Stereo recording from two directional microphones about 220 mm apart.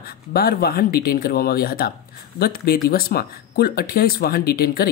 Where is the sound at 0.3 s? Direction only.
45° left (ahead or behind).